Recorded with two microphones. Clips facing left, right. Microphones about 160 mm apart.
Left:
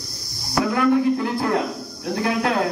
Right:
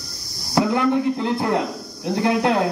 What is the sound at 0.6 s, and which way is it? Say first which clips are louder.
Speech: even; 20° right (ahead or behind).